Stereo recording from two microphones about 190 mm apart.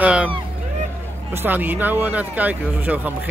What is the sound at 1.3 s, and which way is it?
Speech, 10° right (ahead or behind).